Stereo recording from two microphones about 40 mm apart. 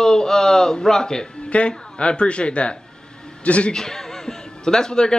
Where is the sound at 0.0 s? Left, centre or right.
Centre; by 3.7 s left.